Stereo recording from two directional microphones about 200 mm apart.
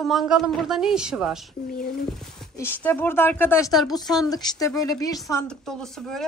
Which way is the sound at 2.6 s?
10° left (ahead or behind).